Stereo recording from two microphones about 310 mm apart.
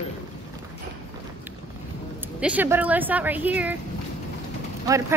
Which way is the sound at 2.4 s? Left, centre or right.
Centre.